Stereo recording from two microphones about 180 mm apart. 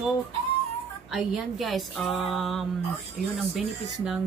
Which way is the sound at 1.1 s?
Centre (ahead or behind).